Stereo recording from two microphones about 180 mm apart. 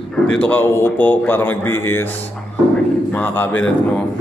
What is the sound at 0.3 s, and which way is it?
A man's voice, 5° left (ahead or behind).